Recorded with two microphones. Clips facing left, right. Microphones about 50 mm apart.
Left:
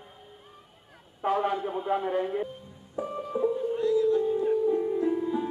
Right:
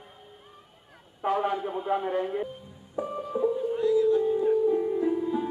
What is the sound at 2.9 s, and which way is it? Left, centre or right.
Music, centre.